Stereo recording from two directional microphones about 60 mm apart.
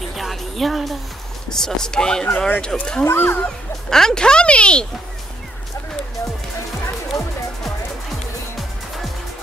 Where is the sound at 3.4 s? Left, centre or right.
Centre.